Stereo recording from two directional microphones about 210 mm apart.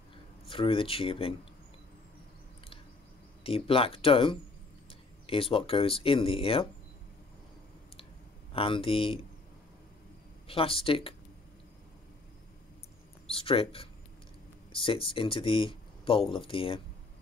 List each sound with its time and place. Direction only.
0.5 s speech: 25° left (ahead or behind)
3.4 s speech: 25° left (ahead or behind)
8.5 s speech: 25° left (ahead or behind)
10.5 s speech: 25° left (ahead or behind)
13.3 s speech: 25° left (ahead or behind)